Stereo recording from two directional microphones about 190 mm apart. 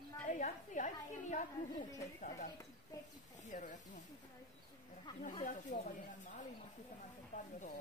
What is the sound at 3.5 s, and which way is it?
Speech, 45° left (ahead or behind).